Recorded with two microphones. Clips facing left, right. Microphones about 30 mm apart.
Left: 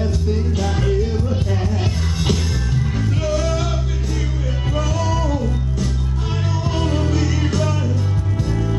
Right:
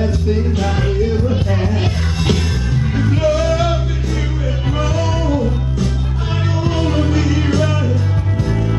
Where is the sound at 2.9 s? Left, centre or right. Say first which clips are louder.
Right 8 dB; right.